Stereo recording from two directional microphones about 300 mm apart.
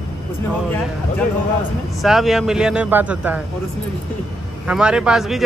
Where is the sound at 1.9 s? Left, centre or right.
Centre.